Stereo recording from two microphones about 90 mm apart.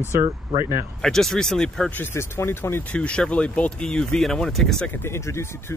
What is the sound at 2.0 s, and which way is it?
Speech, 30° left (ahead or behind).